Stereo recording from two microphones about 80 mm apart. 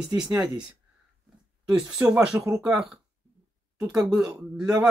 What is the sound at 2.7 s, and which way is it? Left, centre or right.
Speech, centre.